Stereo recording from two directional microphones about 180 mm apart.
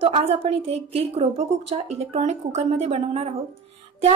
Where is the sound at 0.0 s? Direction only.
30° right (ahead or behind).